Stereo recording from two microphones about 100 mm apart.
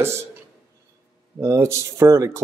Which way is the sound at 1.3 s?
30° right (ahead or behind).